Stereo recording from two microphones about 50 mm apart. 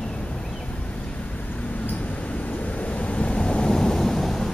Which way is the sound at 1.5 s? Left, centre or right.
Left.